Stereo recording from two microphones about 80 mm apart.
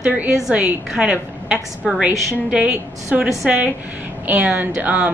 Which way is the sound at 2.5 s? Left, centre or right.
Centre.